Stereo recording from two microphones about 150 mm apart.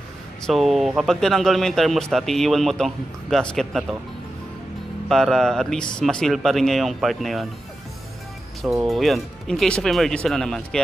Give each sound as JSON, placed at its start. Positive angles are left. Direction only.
{"t": 0.5, "sound": "speech", "side_deg": 0}
{"t": 5.0, "sound": "speech", "side_deg": 0}
{"t": 8.8, "sound": "speech", "side_deg": 0}